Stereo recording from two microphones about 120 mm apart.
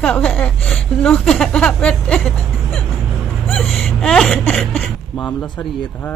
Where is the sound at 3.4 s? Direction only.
Centre (ahead or behind).